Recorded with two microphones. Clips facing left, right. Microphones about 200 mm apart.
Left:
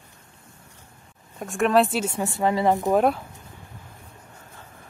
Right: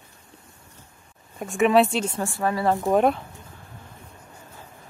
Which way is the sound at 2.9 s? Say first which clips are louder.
Right 2 dB; centre (ahead or behind).